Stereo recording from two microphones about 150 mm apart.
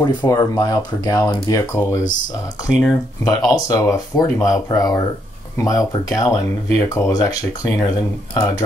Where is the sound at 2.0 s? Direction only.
60° left (ahead or behind).